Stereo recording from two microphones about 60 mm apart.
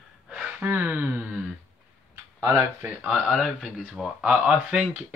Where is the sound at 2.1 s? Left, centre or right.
Right.